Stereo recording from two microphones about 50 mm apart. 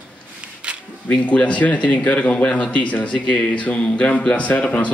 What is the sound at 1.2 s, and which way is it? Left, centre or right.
Speech, left.